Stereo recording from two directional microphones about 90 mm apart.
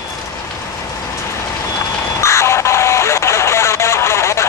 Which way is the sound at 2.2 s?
30° left (ahead or behind).